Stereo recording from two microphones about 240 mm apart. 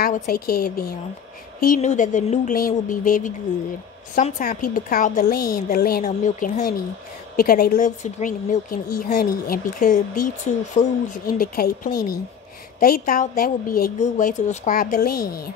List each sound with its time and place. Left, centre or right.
0.0 s speech: left